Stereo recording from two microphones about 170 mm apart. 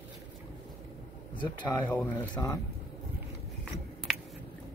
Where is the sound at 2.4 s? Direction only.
20° left (ahead or behind).